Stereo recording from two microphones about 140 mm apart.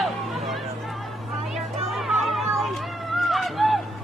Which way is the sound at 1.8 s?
Centre (ahead or behind).